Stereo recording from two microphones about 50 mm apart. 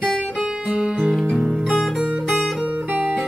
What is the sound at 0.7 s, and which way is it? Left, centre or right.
Guitar, right.